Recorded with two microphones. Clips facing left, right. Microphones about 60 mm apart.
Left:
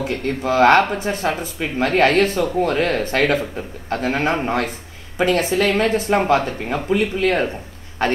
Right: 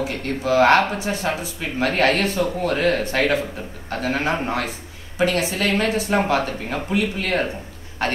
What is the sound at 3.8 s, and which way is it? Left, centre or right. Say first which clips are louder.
Speech: left 3 dB; left.